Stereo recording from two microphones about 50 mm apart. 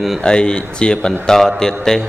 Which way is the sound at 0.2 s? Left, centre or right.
Centre.